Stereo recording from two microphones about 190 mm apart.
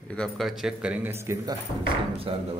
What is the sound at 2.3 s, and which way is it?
Speech, 30° right (ahead or behind).